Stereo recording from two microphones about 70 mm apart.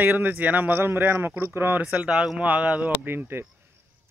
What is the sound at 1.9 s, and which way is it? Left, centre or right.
A man's voice, centre.